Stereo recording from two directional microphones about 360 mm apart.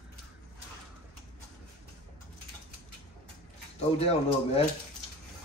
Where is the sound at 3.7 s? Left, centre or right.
Centre.